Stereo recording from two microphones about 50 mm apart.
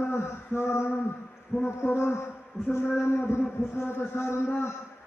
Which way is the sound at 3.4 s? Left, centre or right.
Left.